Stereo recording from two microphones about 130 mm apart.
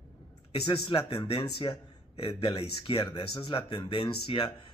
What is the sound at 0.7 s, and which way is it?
A man's voice, 40° left (ahead or behind).